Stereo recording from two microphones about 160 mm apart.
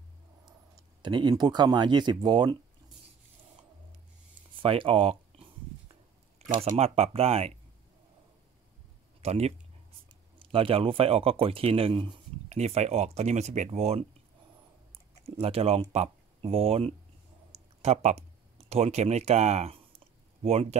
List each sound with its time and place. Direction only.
1.0 s speech: 30° right (ahead or behind)
4.6 s a sound: 35° right (ahead or behind)
6.6 s speech: 40° right (ahead or behind)
9.2 s speech: 40° right (ahead or behind)
12.4 s speech: 45° right (ahead or behind)
15.4 s speech: 40° right (ahead or behind)